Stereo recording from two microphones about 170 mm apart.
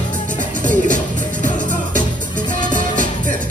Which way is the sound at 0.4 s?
50° right (ahead or behind).